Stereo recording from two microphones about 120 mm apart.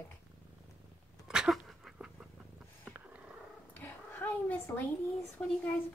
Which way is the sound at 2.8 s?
10° right (ahead or behind).